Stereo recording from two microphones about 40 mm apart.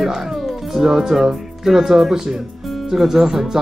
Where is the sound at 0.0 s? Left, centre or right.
Centre.